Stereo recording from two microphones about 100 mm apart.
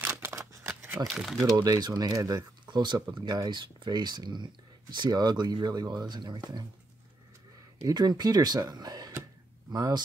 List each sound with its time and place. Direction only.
0.0 s scissors: 25° right (ahead or behind)
1.0 s speech: 25° right (ahead or behind)
1.4 s speech: 40° right (ahead or behind)
2.7 s speech: 50° right (ahead or behind)
7.8 s speech: 40° right (ahead or behind)